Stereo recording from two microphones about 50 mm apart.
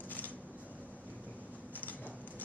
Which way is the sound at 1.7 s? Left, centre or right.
Left.